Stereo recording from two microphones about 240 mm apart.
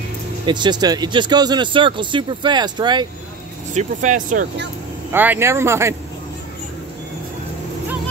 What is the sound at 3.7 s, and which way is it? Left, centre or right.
Speech, right.